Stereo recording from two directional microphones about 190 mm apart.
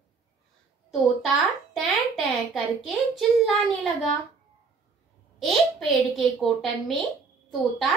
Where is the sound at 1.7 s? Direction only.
Centre (ahead or behind).